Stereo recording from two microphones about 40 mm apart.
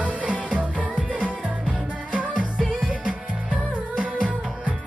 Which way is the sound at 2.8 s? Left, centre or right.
Right.